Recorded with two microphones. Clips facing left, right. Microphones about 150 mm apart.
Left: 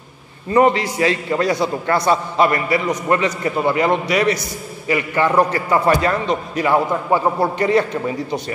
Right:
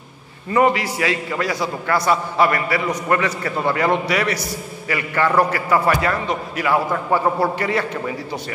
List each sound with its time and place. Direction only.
0.5 s a man's voice: 25° left (ahead or behind)